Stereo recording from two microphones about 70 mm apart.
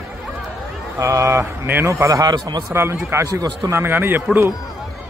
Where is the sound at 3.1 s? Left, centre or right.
Right.